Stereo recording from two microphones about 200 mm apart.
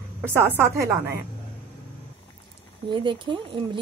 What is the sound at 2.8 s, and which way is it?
Speech, 25° right (ahead or behind).